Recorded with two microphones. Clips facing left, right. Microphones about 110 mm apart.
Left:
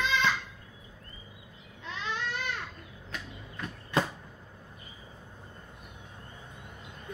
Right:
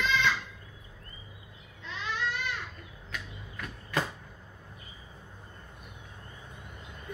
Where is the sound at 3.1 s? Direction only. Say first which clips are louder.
Even; 30° left (ahead or behind).